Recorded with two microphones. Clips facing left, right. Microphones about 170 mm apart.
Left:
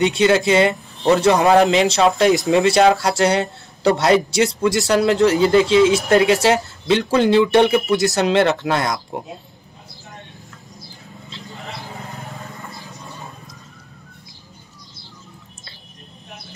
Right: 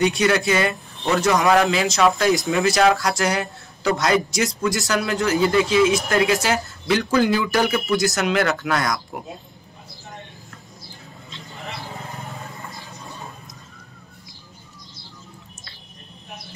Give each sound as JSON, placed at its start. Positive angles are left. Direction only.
{"t": 0.0, "sound": "a man's voice", "side_deg": 25}
{"t": 11.6, "sound": "vehicle", "side_deg": 0}